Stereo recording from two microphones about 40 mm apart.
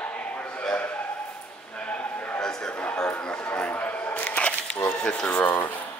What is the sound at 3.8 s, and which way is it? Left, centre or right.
Camera, left.